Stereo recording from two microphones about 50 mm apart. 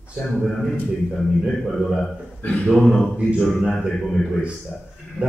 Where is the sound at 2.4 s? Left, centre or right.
Left.